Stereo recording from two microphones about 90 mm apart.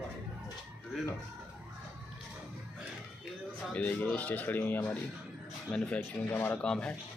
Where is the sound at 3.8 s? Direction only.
15° left (ahead or behind).